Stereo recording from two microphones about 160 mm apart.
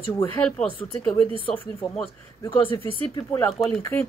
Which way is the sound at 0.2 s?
10° left (ahead or behind).